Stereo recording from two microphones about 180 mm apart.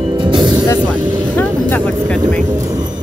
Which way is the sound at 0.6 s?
10° left (ahead or behind).